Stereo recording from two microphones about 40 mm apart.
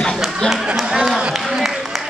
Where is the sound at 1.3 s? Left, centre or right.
Centre.